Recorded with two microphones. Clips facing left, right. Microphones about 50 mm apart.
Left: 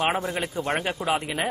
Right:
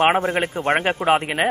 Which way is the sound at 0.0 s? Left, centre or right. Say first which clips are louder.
Right 7 dB; right.